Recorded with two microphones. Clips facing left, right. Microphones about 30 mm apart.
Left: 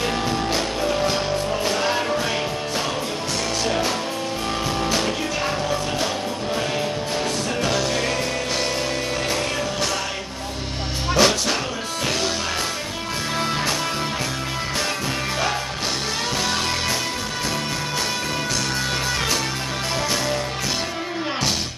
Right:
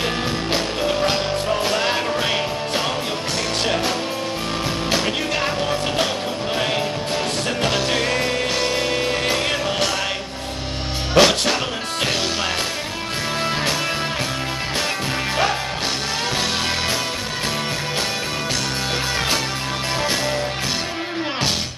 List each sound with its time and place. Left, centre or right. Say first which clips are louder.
1.0 s music: right 2 dB; right
5.0 s music: right 2 dB; right
7.7 s music: right 2 dB; right
11.2 s music: right 4 dB; right
20.0 s music: right 1 dB; centre